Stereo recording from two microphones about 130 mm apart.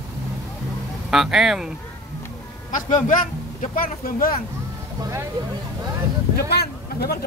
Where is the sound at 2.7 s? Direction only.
80° left.